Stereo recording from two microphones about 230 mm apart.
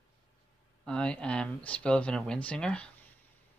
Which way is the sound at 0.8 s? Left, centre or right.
Centre.